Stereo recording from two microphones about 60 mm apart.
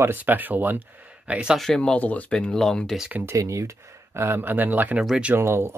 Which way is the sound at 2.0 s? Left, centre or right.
Left.